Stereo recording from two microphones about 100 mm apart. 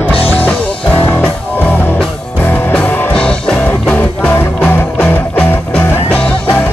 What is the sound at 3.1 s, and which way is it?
Music, 10° left (ahead or behind).